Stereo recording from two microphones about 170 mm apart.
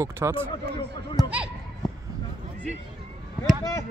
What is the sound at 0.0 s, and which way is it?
Speech, 15° right (ahead or behind).